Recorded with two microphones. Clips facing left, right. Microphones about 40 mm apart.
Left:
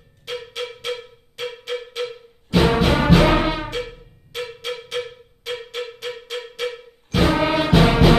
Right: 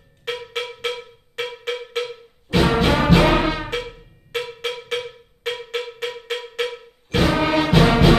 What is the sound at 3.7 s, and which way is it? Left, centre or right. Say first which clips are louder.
Music: right 1 dB; right.